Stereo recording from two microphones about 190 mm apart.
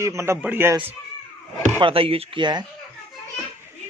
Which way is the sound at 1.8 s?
30° right (ahead or behind).